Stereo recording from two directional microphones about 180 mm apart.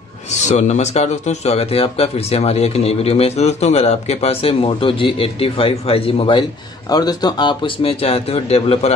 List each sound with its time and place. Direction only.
0.3 s speech: 40° left (ahead or behind)